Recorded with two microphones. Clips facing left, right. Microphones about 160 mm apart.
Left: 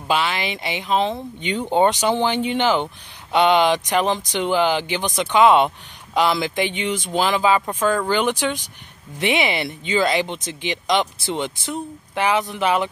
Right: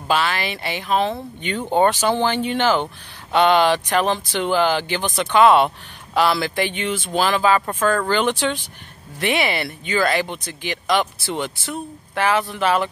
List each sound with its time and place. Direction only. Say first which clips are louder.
0.1 s speech: right 1 dB; 20° left (ahead or behind)